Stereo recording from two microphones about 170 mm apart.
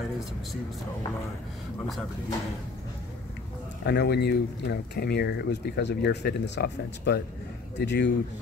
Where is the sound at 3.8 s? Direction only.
80° left.